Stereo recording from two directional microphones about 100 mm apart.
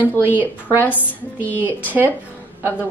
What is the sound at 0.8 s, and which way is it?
Speech, 15° left (ahead or behind).